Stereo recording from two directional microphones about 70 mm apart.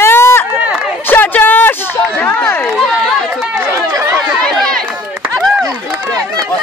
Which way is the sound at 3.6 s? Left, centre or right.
Right.